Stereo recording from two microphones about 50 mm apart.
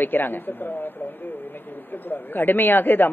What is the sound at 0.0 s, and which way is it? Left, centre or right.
A man's voice, left.